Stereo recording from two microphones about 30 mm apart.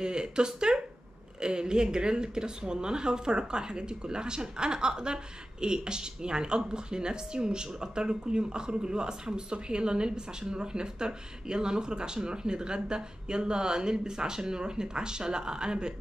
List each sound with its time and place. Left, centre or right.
0.0 s speech: right